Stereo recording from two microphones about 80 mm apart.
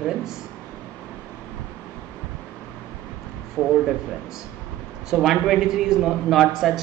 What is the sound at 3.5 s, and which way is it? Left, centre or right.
Speech, centre.